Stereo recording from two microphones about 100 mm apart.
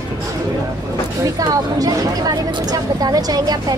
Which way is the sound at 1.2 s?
40° right (ahead or behind).